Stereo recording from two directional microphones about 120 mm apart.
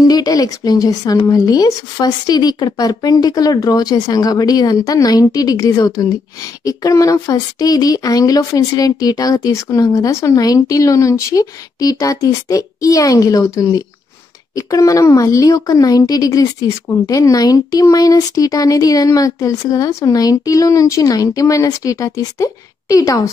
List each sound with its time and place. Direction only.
0.0 s a woman's voice: 35° left (ahead or behind)